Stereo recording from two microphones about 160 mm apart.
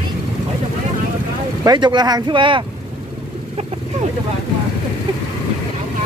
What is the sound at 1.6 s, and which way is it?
Speech, 25° right (ahead or behind).